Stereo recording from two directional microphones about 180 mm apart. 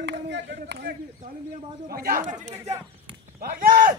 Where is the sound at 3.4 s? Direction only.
55° right (ahead or behind).